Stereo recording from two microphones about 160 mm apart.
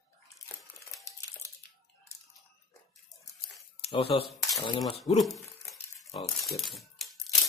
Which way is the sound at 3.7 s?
35° left (ahead or behind).